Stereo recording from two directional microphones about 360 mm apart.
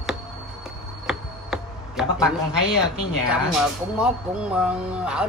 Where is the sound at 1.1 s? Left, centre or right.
Centre.